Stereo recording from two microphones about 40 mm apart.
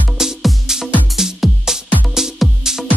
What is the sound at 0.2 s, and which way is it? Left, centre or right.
Music, centre.